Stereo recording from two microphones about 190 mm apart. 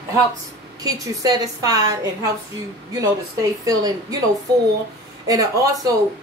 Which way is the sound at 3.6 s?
20° right (ahead or behind).